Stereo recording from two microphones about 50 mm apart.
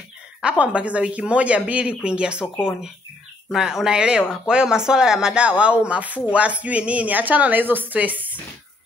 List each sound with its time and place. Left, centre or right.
0.4 s speech: right
3.4 s a woman's voice: centre; by 8.4 s right